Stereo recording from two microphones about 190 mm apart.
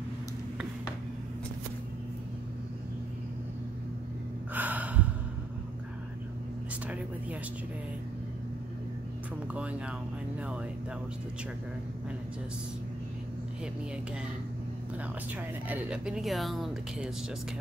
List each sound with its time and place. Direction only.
4.6 s gasp: 10° right (ahead or behind)
6.9 s a sound: 10° right (ahead or behind)
9.5 s speech: 5° right (ahead or behind)
15.7 s speech: 5° right (ahead or behind)